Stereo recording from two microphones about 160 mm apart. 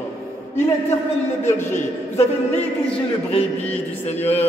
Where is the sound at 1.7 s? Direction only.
40° left (ahead or behind).